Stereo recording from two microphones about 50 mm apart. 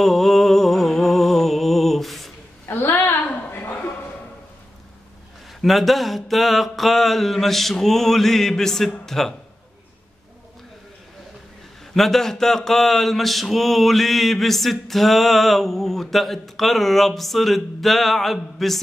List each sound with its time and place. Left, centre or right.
0.0 s music: centre
2.7 s a sound: left
5.6 s mantra: centre
11.9 s mantra: centre